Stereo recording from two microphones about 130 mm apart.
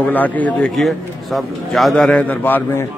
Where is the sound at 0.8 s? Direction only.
Centre (ahead or behind).